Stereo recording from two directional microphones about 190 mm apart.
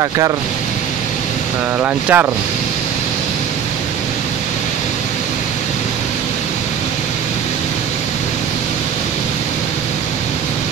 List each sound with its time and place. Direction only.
1.8 s speech: 10° right (ahead or behind)